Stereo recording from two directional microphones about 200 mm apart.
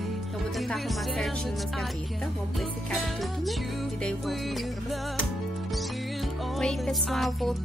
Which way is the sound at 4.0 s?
5° left (ahead or behind).